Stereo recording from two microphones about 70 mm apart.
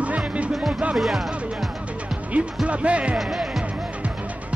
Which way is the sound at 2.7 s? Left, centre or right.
Centre.